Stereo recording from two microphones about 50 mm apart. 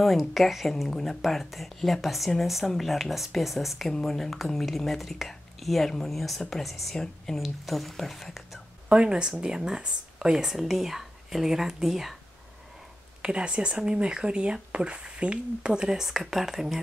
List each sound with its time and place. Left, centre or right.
0.0 s speech: centre
8.8 s speech: right; by 12.2 s centre
13.2 s speech: right